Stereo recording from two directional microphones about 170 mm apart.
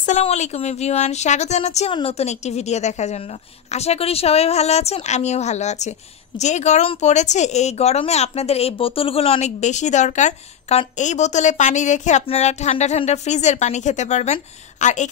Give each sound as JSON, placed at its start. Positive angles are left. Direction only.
{"t": 0.0, "sound": "speech", "side_deg": 40}